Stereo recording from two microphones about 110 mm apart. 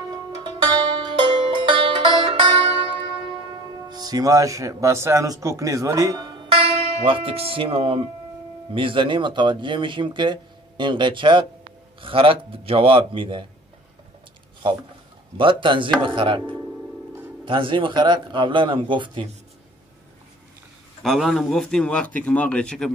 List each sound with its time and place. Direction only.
0.4 s music: 40° right (ahead or behind)
3.9 s speech: 35° right (ahead or behind)
6.7 s speech: 60° right (ahead or behind)
14.6 s speech: 50° right (ahead or behind)
17.5 s speech: 50° right (ahead or behind)
21.0 s speech: centre (ahead or behind)